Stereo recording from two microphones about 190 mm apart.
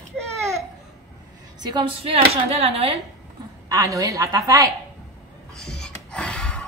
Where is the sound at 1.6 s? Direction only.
20° right (ahead or behind).